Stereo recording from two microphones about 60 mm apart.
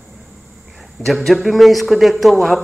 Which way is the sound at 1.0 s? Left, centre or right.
Centre.